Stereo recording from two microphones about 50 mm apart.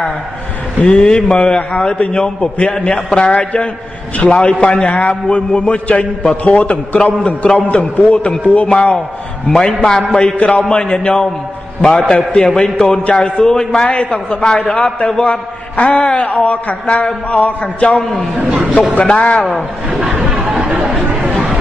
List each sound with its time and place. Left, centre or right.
0.8 s a man's voice: centre
10.3 s a man's voice: left
10.7 s a man's voice: centre
12.1 s a man's voice: left
19.5 s speech: centre
20.2 s chatter: centre